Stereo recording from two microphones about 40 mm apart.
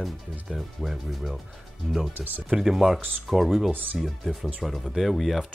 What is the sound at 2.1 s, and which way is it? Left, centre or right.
Speech, right.